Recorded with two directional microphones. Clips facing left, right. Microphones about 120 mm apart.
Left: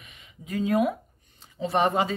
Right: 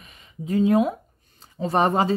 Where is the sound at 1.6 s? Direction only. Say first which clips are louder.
Right 3 dB; 40° right (ahead or behind).